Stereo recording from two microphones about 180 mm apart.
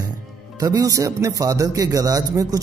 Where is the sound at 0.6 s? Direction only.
20° right (ahead or behind).